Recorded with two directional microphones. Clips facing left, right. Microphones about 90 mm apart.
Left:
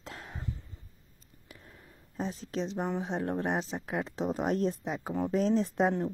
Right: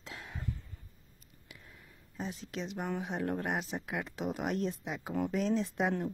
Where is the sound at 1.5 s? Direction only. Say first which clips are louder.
Left 2 dB; 40° left (ahead or behind).